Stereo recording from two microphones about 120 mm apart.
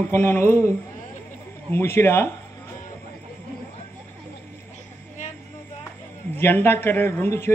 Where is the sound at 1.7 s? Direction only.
20° left (ahead or behind).